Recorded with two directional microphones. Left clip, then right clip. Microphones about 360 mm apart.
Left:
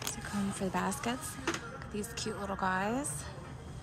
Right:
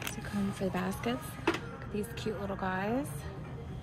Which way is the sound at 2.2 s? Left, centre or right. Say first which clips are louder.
Left 3 dB; centre.